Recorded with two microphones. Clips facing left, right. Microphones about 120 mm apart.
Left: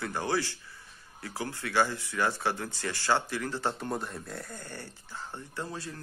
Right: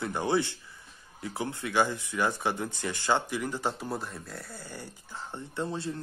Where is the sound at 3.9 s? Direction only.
Centre (ahead or behind); by 5.9 s 25° right (ahead or behind).